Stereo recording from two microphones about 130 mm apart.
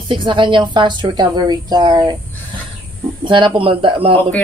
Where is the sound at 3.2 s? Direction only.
40° right (ahead or behind).